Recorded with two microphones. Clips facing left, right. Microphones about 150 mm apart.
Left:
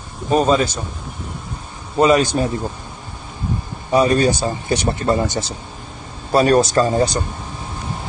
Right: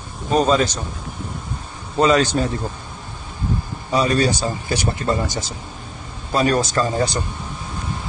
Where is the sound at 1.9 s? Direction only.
10° left (ahead or behind).